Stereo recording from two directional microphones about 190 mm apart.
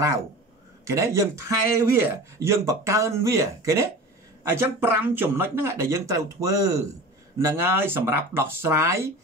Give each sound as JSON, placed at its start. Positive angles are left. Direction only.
{"t": 0.8, "sound": "speech", "side_deg": -15}